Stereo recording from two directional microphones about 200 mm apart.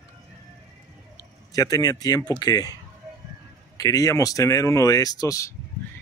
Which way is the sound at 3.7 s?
15° left (ahead or behind).